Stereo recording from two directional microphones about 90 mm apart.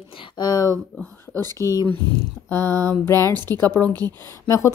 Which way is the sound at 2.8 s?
30° left (ahead or behind).